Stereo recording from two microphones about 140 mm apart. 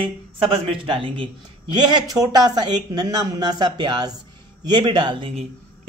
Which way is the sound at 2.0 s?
30° right (ahead or behind).